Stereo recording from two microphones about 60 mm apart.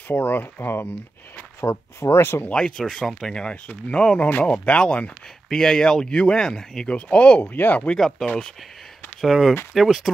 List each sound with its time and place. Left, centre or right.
0.1 s speech: left
1.6 s speech: left
2.8 s speech: centre; by 5.1 s left
5.5 s speech: centre; by 7.9 s left
8.2 s speech: centre
9.2 s speech: centre